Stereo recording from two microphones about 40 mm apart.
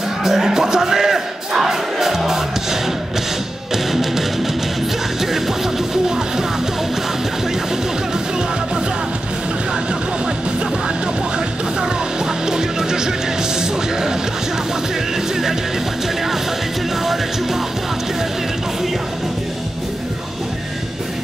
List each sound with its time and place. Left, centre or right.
0.2 s crowd: centre
3.7 s music: centre
6.0 s music: centre
12.4 s music: centre
17.0 s music: centre